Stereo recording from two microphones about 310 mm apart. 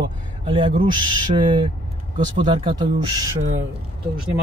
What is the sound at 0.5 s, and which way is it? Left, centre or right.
Speech, centre.